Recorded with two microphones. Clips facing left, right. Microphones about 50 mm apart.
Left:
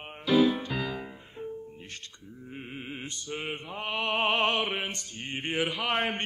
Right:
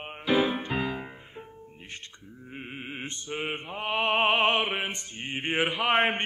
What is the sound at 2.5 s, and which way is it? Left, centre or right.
Opera, right.